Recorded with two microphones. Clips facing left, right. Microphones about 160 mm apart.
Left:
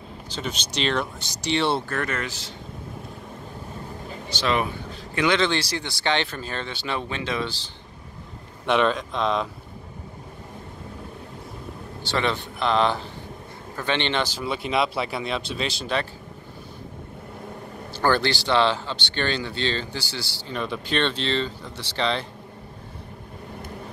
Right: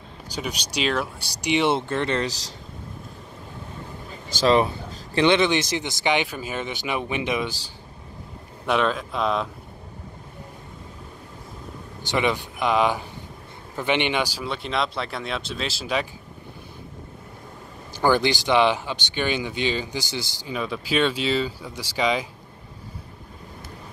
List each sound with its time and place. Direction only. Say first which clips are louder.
0.3 s speech: right 1 dB; 10° right (ahead or behind); by 2.5 s 35° right (ahead or behind)
4.4 s speech: right 6 dB; 35° right (ahead or behind); by 7.5 s 15° right (ahead or behind)
8.6 s speech: left 1 dB; centre (ahead or behind)
12.1 s speech: right 2 dB; 15° right (ahead or behind)
14.4 s speech: left 2 dB; 5° left (ahead or behind)
17.9 s speech: right 2 dB; 15° right (ahead or behind)
20.5 s speech: right 2 dB; centre (ahead or behind)